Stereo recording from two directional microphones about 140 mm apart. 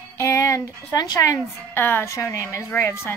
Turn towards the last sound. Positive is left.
turn(degrees=20)  # may be behind; listen again after turning